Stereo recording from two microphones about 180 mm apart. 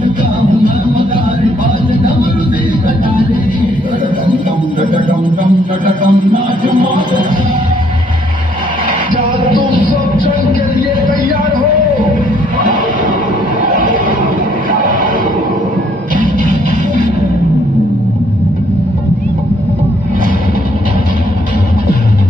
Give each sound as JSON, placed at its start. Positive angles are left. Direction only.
{"t": 0.0, "sound": "music", "side_deg": -25}
{"t": 5.4, "sound": "music", "side_deg": -45}
{"t": 9.1, "sound": "music", "side_deg": -25}
{"t": 11.1, "sound": "a sound", "side_deg": -50}
{"t": 13.6, "sound": "music", "side_deg": -45}